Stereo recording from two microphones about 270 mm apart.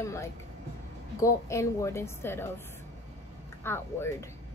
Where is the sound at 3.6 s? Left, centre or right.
Centre.